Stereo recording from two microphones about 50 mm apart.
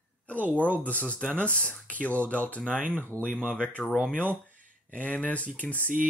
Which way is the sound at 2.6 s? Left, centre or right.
Right.